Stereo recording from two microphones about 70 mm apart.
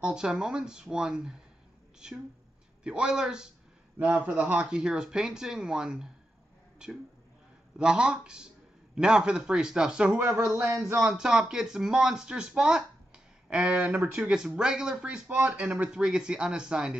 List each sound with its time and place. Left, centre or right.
0.0 s speech: centre
10.3 s speech: right
11.0 s speech: centre
15.2 s speech: right
15.9 s speech: centre